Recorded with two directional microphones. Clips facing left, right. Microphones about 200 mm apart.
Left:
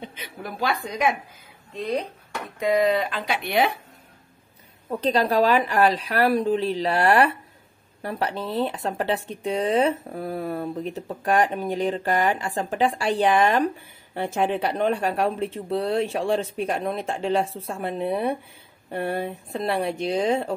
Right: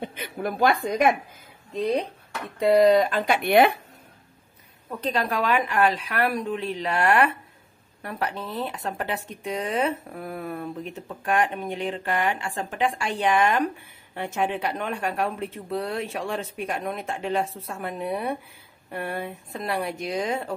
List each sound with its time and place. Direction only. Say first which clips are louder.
0.0 s a woman's voice: right 6 dB; 55° right (ahead or behind)
2.6 s speech: right 4 dB; 35° right (ahead or behind); by 3.7 s 60° right (ahead or behind)
5.0 s speech: left 5 dB; 35° left (ahead or behind)